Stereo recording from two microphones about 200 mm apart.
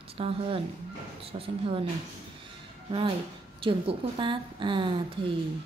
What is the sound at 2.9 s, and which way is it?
A woman's voice, 25° right (ahead or behind).